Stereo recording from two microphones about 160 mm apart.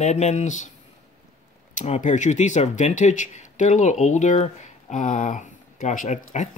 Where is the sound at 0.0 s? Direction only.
45° left (ahead or behind).